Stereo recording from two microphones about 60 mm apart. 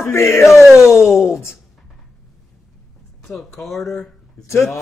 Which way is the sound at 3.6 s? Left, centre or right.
Centre.